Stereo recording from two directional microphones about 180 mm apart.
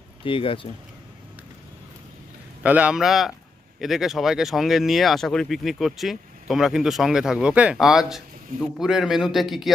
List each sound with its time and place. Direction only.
0.2 s speech: 30° left (ahead or behind)
2.6 s speech: 10° right (ahead or behind)